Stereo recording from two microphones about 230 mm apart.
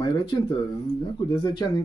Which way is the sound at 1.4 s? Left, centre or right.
Centre.